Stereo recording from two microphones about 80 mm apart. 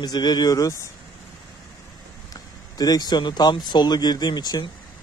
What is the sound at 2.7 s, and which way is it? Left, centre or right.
Speech, left.